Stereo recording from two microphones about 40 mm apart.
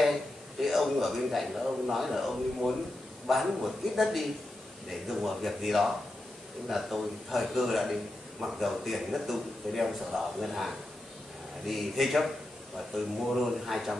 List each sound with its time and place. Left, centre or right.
0.0 s a man's voice: centre